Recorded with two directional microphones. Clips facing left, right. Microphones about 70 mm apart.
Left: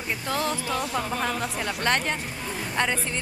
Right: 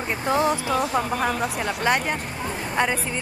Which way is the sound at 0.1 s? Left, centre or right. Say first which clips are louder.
Right 6 dB; right.